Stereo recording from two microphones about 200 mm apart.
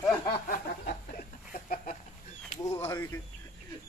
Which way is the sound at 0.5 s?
45° left (ahead or behind).